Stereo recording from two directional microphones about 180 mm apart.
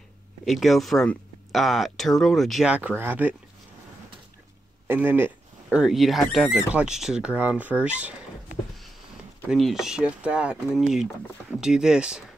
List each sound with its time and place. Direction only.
0.5 s speech: centre (ahead or behind)
4.8 s speech: 10° right (ahead or behind)
9.5 s speech: centre (ahead or behind)